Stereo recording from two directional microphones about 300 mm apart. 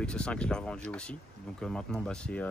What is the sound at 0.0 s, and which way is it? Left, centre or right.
Speech, centre.